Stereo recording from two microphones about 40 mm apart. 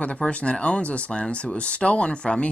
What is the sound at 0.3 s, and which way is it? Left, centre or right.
Speech, left.